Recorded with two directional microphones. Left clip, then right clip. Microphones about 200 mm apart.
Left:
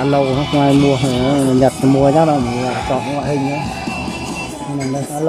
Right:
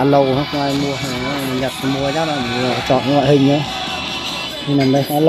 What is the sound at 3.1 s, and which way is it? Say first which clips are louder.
Speech: right 6 dB; 20° right (ahead or behind).